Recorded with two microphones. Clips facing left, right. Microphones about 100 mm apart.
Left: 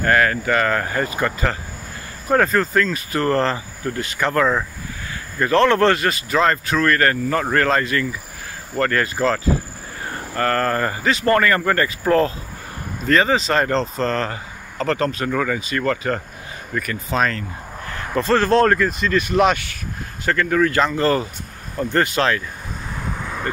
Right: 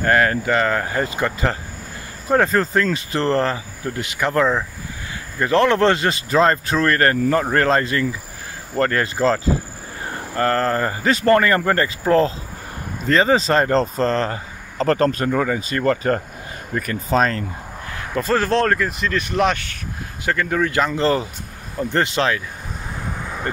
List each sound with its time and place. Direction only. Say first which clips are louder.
0.0 s speech: even; 25° right (ahead or behind)
3.3 s speech: even; 15° right (ahead or behind); by 17.5 s 35° right (ahead or behind)
17.8 s a sound: left 2 dB; 5° right (ahead or behind)
18.5 s speech: left 3 dB; 5° left (ahead or behind)
20.2 s speech: left 2 dB; 15° right (ahead or behind)